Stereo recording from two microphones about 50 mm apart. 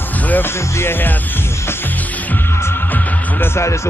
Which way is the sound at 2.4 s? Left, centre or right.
Left.